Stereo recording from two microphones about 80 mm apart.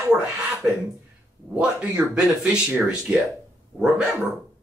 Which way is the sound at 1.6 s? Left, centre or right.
Centre.